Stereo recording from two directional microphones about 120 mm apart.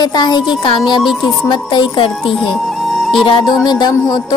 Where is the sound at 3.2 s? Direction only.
45° left (ahead or behind).